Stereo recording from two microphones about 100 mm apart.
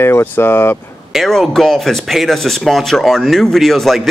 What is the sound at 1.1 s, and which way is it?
Speech, centre (ahead or behind).